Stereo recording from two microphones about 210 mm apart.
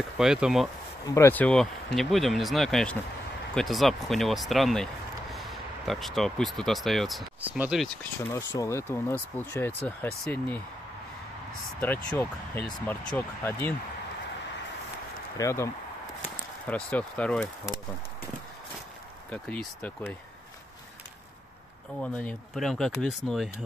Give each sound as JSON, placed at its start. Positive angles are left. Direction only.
{"t": 0.2, "sound": "speech", "side_deg": 0}
{"t": 1.0, "sound": "speech", "side_deg": 15}
{"t": 8.2, "sound": "speech", "side_deg": 15}
{"t": 11.8, "sound": "speech", "side_deg": 10}
{"t": 15.3, "sound": "speech", "side_deg": 15}
{"t": 19.3, "sound": "speech", "side_deg": 5}
{"t": 22.0, "sound": "speech", "side_deg": 5}